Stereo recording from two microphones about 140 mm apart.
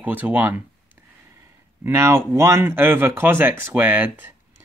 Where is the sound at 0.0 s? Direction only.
10° right (ahead or behind).